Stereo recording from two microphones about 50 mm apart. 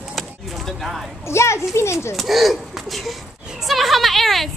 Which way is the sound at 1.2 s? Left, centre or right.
Left.